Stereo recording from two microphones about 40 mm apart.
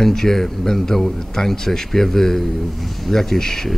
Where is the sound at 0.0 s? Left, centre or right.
Centre.